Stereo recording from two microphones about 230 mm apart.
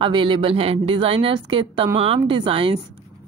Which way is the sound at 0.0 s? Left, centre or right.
Right.